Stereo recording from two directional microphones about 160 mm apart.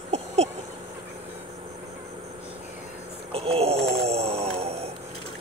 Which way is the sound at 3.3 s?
40° right (ahead or behind).